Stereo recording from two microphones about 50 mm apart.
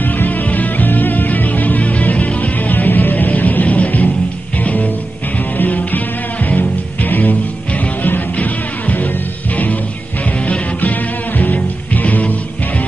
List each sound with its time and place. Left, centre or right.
0.0 s music: left
10.4 s music: left